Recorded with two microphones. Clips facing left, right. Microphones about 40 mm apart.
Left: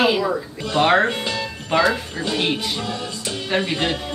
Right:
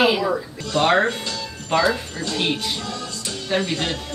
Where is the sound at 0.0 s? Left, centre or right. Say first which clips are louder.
Even; centre.